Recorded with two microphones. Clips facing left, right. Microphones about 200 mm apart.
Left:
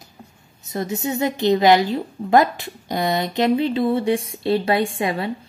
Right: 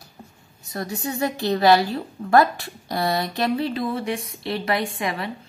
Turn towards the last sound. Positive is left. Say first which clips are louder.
# left 5 dB
turn(degrees=30)  # may be behind; listen again after turning